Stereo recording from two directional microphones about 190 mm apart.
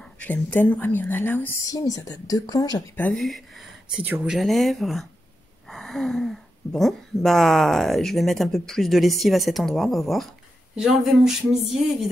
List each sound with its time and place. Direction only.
0.0 s a woman's voice: 10° left (ahead or behind)
3.0 s speech: 5° left (ahead or behind)